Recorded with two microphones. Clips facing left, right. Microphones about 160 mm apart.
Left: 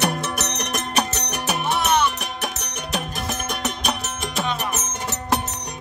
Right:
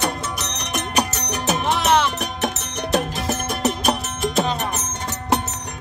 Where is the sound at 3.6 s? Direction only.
30° right (ahead or behind).